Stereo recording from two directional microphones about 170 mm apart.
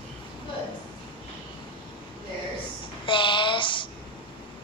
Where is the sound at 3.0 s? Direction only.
30° left (ahead or behind).